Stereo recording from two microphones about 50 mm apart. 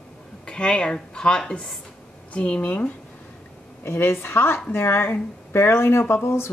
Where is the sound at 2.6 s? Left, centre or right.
Left.